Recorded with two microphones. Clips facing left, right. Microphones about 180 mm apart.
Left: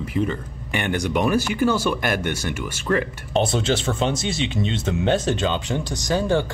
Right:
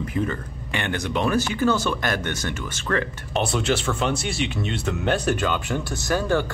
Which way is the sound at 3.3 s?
30° left (ahead or behind).